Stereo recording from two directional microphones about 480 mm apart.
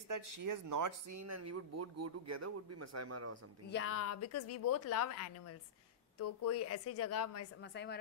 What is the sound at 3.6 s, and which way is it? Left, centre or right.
A woman's voice, left.